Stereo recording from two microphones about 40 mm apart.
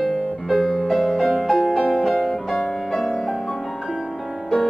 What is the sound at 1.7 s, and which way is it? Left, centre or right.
Music, centre.